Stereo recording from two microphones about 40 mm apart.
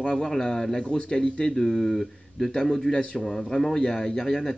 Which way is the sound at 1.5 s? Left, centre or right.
Centre.